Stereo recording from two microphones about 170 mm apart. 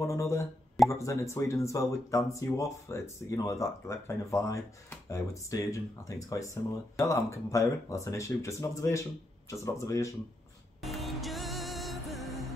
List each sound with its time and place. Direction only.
0.0 s a sound: 15° left (ahead or behind)
0.8 s speech: 15° left (ahead or behind)
10.8 s music: centre (ahead or behind)